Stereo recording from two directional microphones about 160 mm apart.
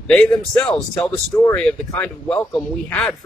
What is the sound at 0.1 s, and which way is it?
Speech, 5° left (ahead or behind).